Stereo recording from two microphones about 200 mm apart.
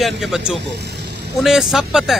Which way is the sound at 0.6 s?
55° right (ahead or behind).